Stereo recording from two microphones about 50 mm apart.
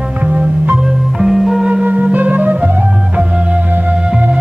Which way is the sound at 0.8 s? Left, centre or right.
Centre.